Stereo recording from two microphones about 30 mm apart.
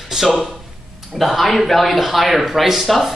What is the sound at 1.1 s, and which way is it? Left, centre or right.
Speech, centre.